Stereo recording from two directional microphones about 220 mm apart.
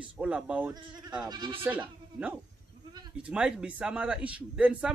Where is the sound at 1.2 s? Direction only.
20° right (ahead or behind).